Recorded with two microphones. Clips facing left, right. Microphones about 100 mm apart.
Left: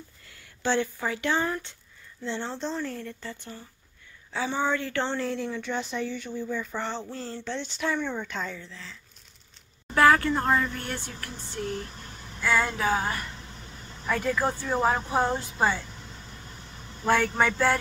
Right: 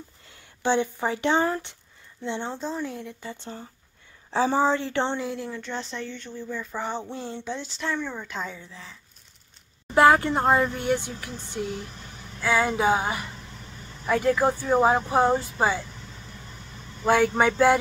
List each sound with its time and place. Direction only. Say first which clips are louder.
0.3 s speech: right 3 dB; 20° right (ahead or behind)
5.2 s speech: left 1 dB; 5° right (ahead or behind)
7.5 s speech: left 2 dB; centre (ahead or behind)
8.5 s speech: even; 20° right (ahead or behind)
9.9 s speech: right 3 dB; 20° right (ahead or behind)
17.0 s speech: right 3 dB; 10° right (ahead or behind)